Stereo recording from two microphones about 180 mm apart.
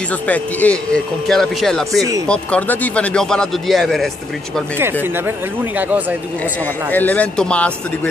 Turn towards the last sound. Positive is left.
turn(degrees=5)  # may be behind; listen again after turning